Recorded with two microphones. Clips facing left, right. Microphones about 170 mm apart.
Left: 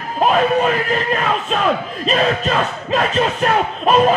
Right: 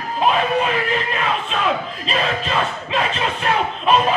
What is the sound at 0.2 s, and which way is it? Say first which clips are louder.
Speech: left 3 dB; 45° left (ahead or behind).